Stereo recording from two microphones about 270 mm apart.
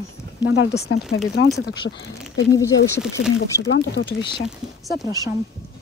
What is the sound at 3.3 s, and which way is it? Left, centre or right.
Speech, left.